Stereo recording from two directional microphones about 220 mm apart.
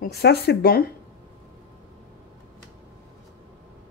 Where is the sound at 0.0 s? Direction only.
45° left (ahead or behind).